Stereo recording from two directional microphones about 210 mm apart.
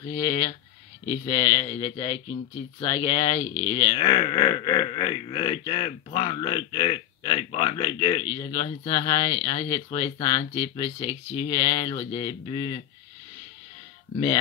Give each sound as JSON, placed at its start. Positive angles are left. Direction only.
{"t": 0.0, "sound": "speech", "side_deg": 20}